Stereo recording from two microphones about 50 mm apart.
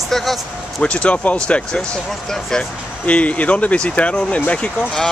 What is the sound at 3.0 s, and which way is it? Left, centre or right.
Speech, left.